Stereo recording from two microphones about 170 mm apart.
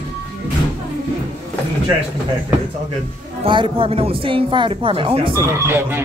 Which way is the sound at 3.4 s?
30° right (ahead or behind).